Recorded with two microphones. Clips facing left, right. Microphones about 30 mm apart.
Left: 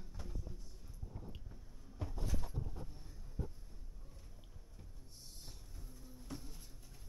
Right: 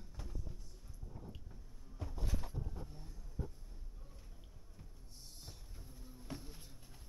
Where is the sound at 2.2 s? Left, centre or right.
Centre.